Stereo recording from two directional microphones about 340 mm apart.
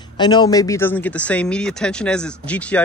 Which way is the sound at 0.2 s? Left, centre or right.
Centre.